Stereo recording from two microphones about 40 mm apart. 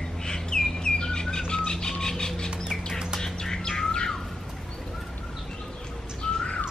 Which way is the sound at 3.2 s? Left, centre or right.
Centre.